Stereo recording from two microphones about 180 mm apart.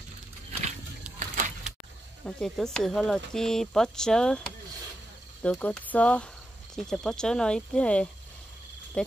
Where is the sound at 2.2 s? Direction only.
5° left (ahead or behind).